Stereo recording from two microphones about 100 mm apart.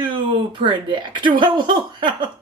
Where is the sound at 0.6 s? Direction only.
50° right (ahead or behind).